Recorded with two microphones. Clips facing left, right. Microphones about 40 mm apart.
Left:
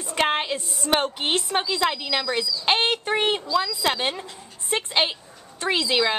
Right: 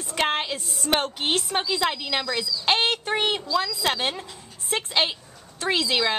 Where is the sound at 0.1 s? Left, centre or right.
Centre.